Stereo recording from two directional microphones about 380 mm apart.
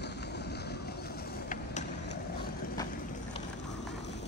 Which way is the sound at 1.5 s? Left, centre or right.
Left.